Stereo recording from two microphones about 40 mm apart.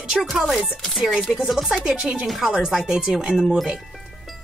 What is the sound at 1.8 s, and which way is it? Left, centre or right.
Speech, centre.